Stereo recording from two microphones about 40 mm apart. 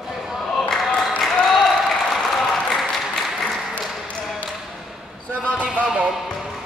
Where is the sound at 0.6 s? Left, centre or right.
Centre.